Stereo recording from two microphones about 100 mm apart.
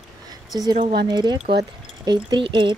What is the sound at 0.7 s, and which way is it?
Speech, 60° right (ahead or behind).